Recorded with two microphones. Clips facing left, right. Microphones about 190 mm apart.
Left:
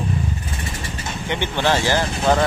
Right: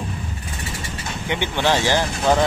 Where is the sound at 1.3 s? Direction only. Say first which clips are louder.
Even; 15° right (ahead or behind).